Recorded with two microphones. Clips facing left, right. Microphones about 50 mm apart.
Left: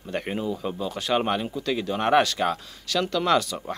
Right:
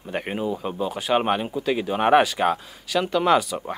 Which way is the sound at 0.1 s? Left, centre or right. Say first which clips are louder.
Right 2 dB; centre.